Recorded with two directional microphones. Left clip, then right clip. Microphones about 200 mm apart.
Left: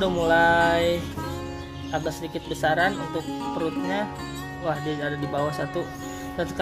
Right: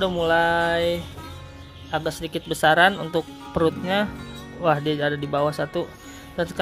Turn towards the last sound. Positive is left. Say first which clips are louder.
# right 1 dB
turn(degrees=-20)  # may be behind; listen again after turning